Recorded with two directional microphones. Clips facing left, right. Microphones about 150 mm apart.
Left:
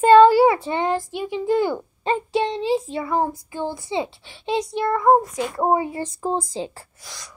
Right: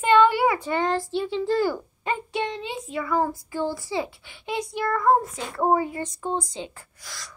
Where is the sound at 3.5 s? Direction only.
20° left (ahead or behind).